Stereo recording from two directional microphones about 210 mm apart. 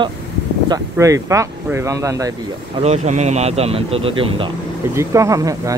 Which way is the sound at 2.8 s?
30° right (ahead or behind).